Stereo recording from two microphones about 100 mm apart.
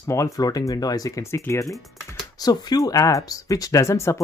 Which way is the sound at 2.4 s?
40° left (ahead or behind).